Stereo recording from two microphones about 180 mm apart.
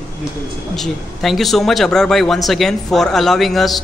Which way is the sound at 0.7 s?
Centre (ahead or behind).